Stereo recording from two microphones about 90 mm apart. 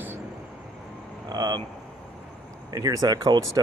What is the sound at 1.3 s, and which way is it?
Speech, 50° right (ahead or behind).